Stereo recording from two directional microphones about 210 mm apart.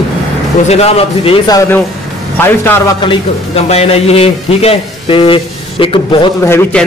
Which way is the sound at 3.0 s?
30° left (ahead or behind).